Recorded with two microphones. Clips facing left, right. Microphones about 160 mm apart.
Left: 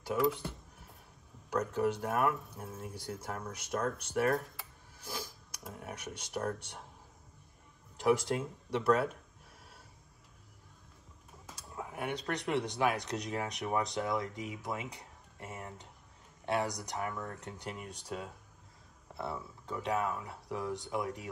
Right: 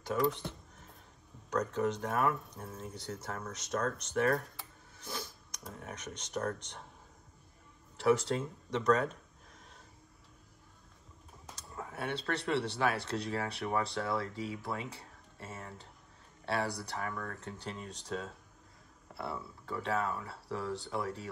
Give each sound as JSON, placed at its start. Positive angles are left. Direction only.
{"t": 0.0, "sound": "a sound", "side_deg": 10}
{"t": 1.5, "sound": "speech", "side_deg": 10}
{"t": 8.0, "sound": "speech", "side_deg": 10}
{"t": 11.5, "sound": "speech", "side_deg": 10}